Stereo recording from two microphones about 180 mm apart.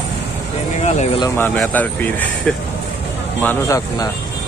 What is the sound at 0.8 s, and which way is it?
Speech, 40° left (ahead or behind).